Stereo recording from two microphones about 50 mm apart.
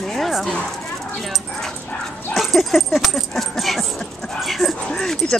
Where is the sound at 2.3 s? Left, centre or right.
Centre.